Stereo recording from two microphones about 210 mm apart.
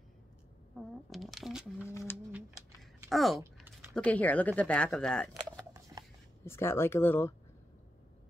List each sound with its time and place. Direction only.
0.7 s speech: centre (ahead or behind)
1.8 s speech: 10° left (ahead or behind)
3.0 s a sound: centre (ahead or behind)
3.9 s speech: 5° left (ahead or behind)
5.4 s shuffling cards: 15° right (ahead or behind)
6.4 s speech: 10° left (ahead or behind)